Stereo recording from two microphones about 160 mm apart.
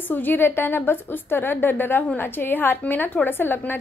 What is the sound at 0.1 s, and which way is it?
A woman's voice, 10° left (ahead or behind).